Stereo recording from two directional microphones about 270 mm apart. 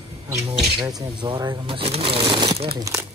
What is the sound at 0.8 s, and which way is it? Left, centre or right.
Speech, centre.